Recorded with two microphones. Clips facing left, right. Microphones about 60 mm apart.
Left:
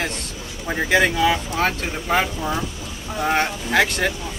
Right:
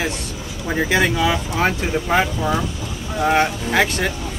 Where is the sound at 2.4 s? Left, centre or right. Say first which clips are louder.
Right 4 dB; centre.